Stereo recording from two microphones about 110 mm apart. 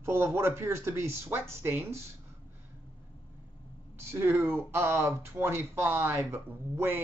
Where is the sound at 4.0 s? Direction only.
25° right (ahead or behind).